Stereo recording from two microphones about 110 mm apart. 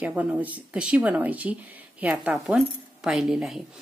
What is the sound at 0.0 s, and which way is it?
Speech, 10° right (ahead or behind).